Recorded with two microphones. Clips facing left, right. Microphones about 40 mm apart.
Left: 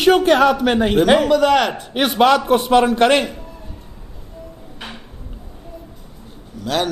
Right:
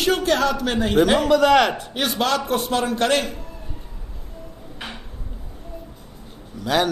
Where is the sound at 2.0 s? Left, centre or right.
Left.